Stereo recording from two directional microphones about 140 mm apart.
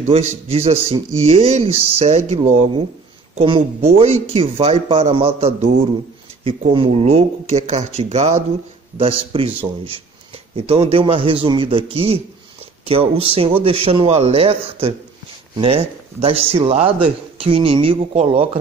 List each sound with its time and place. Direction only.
0.0 s speech: 50° right (ahead or behind)
3.3 s a man's voice: 40° right (ahead or behind)
3.8 s speech: 50° right (ahead or behind)
8.9 s a man's voice: 40° right (ahead or behind)
10.5 s a man's voice: 45° right (ahead or behind)